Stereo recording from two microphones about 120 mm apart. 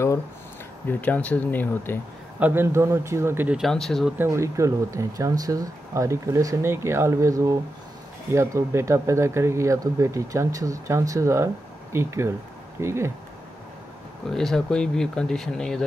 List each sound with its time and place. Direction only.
0.8 s speech: 15° left (ahead or behind)
2.4 s speech: 20° right (ahead or behind)
3.4 s speech: 5° right (ahead or behind)
4.2 s speech: 25° right (ahead or behind)
14.3 s speech: 5° left (ahead or behind)